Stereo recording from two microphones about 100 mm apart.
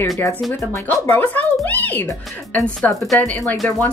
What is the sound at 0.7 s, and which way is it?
A child's voice, 20° left (ahead or behind).